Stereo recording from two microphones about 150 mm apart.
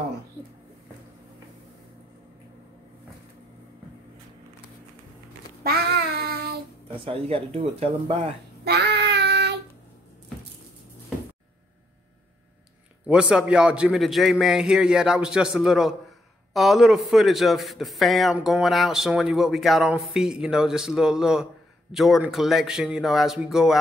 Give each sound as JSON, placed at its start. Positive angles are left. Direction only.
{"t": 5.6, "sound": "child singing", "side_deg": -90}
{"t": 7.1, "sound": "speech", "side_deg": -40}
{"t": 8.6, "sound": "child singing", "side_deg": -90}
{"t": 13.0, "sound": "a man's voice", "side_deg": -5}